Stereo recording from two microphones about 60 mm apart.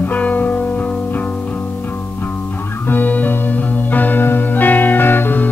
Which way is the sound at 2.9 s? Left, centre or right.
Left.